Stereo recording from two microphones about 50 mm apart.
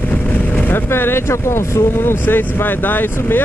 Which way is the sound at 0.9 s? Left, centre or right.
Left.